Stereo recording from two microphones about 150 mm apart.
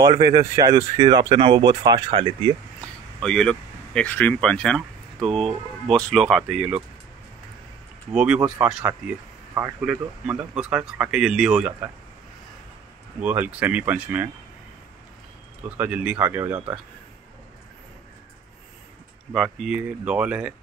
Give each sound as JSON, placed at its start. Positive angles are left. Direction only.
{"t": 0.0, "sound": "speech", "side_deg": -25}
{"t": 3.2, "sound": "speech", "side_deg": 5}
{"t": 8.1, "sound": "speech", "side_deg": -5}
{"t": 13.2, "sound": "speech", "side_deg": -10}
{"t": 15.8, "sound": "speech", "side_deg": -10}
{"t": 19.3, "sound": "speech", "side_deg": 0}